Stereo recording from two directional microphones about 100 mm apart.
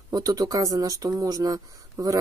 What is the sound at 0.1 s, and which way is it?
Speech, 40° right (ahead or behind).